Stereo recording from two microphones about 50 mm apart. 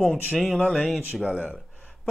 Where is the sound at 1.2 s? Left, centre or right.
Right.